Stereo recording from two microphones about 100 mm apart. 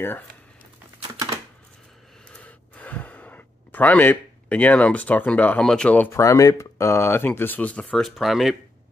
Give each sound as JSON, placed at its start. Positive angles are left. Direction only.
{"t": 2.2, "sound": "gasp", "side_deg": 15}
{"t": 5.6, "sound": "speech", "side_deg": 5}
{"t": 6.1, "sound": "speech", "side_deg": 30}
{"t": 8.2, "sound": "speech", "side_deg": 0}